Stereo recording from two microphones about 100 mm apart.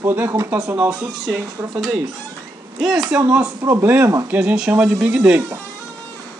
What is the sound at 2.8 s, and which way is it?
Speech, 5° right (ahead or behind).